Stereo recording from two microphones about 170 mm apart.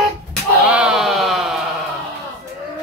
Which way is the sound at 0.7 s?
5° right (ahead or behind).